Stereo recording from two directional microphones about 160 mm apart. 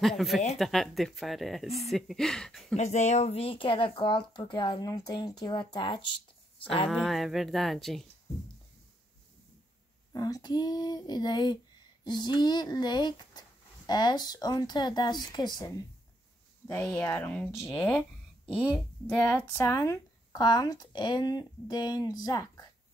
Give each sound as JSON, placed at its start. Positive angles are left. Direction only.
{"t": 0.2, "sound": "speech", "side_deg": 0}
{"t": 2.7, "sound": "speech", "side_deg": 45}
{"t": 6.9, "sound": "speech", "side_deg": 0}
{"t": 10.1, "sound": "speech", "side_deg": 25}
{"t": 16.8, "sound": "a woman's voice", "side_deg": 10}
{"t": 18.4, "sound": "a woman's voice", "side_deg": -5}
{"t": 19.0, "sound": "a woman's voice", "side_deg": 15}